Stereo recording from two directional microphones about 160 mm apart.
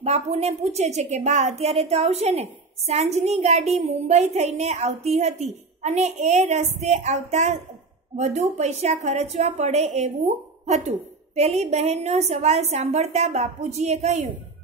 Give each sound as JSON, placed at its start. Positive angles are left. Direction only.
{"t": 0.0, "sound": "a woman's voice", "side_deg": -40}